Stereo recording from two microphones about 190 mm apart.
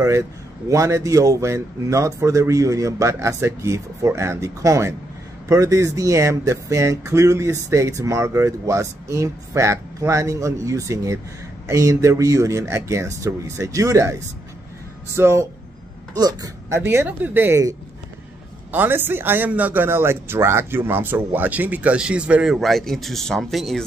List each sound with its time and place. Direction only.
0.7 s speech: 15° right (ahead or behind)
15.1 s speech: 15° right (ahead or behind)